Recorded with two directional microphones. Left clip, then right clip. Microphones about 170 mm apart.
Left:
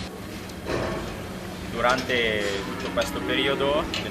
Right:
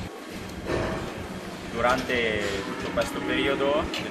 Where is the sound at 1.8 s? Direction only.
5° left (ahead or behind).